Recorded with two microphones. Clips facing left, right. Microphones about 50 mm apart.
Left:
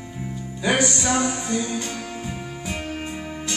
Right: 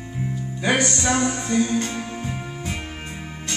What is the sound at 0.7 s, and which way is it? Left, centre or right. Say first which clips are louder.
Music: even; centre.